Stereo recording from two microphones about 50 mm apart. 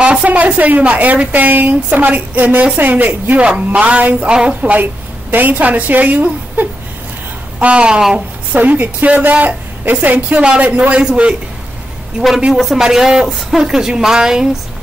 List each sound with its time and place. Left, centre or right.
0.0 s a woman's voice: right
3.3 s a man's voice: right
5.3 s a woman's voice: right
7.6 s a man's voice: right
8.5 s a woman's voice: right
12.5 s speech: centre